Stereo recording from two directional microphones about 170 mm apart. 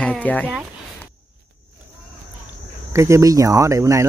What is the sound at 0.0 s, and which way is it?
Speech, 10° left (ahead or behind).